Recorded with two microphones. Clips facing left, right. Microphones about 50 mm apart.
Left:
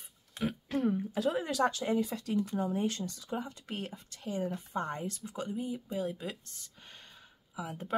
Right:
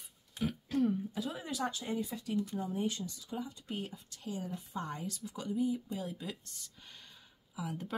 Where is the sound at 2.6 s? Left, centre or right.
Left.